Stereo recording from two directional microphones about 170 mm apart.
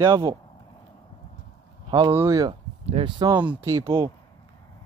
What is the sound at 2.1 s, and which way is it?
Speech, 15° right (ahead or behind).